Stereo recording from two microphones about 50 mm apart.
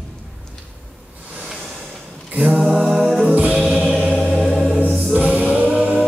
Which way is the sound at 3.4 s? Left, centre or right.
Centre.